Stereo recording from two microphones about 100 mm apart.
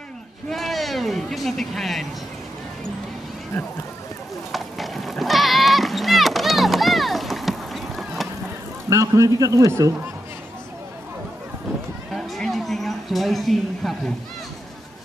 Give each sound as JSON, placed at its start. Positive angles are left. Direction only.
{"t": 0.5, "sound": "speech", "side_deg": 0}
{"t": 4.5, "sound": "sheep", "side_deg": 0}
{"t": 8.8, "sound": "a man's voice", "side_deg": -35}
{"t": 12.1, "sound": "a sound", "side_deg": 5}